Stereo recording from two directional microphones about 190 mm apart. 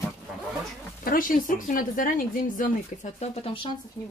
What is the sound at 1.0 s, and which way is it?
Speech, 50° left (ahead or behind).